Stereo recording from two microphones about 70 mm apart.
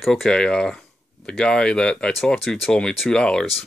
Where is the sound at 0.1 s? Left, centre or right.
Centre.